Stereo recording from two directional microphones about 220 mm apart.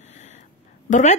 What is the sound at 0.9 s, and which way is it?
Speech, 35° left (ahead or behind).